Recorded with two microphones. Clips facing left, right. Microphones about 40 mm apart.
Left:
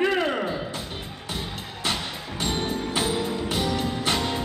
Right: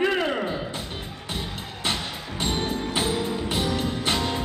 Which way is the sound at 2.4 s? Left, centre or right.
Centre.